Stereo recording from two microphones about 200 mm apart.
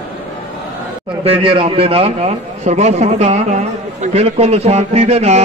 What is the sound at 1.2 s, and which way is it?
A man's voice, 25° right (ahead or behind).